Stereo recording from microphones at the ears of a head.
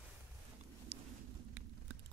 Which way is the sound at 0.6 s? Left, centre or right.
Right.